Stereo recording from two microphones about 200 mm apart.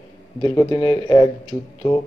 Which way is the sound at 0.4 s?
15° left (ahead or behind).